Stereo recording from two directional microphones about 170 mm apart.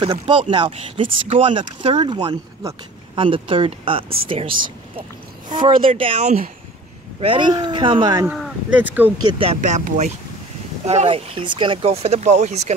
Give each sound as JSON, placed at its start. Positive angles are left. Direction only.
{"t": 0.0, "sound": "speech", "side_deg": -30}
{"t": 5.9, "sound": "speech", "side_deg": -30}
{"t": 8.3, "sound": "speech", "side_deg": -5}
{"t": 9.2, "sound": "speech", "side_deg": -30}
{"t": 9.6, "sound": "speech", "side_deg": -45}